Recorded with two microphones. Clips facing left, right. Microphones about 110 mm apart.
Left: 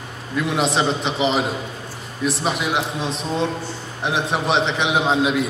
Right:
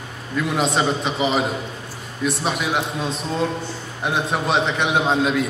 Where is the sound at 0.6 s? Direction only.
25° left (ahead or behind).